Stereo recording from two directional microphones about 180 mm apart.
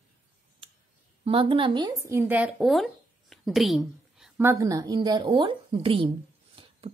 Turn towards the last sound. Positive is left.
turn(degrees=-30)  # may be behind; listen again after turning